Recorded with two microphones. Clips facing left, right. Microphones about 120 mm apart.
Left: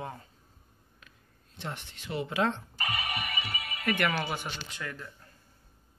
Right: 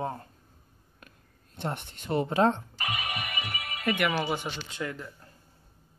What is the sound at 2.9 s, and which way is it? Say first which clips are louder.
Speech: right 1 dB; 20° right (ahead or behind).